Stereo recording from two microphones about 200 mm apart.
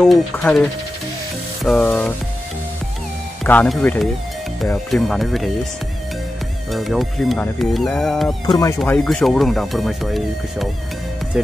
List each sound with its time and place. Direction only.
0.0 s speech: 5° left (ahead or behind)
3.4 s speech: 5° left (ahead or behind)
6.7 s speech: centre (ahead or behind)
8.5 s speech: 15° left (ahead or behind)
8.8 s speech: 5° left (ahead or behind)